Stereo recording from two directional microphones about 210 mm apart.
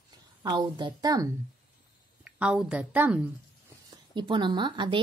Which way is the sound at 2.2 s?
5° right (ahead or behind).